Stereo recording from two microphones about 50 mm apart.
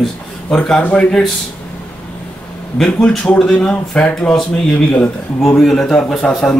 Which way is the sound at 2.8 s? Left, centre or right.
Centre.